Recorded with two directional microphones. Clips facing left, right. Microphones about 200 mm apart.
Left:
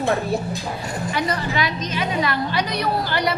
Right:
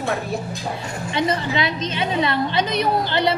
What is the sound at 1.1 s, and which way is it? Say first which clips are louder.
A woman's voice: right 3 dB; 25° right (ahead or behind).